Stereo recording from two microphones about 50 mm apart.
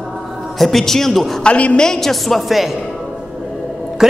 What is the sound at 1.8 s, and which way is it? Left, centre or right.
Speech, centre.